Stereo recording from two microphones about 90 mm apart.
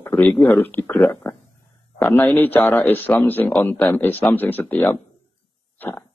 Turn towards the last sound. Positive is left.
turn(degrees=20)  # may be behind; listen again after turning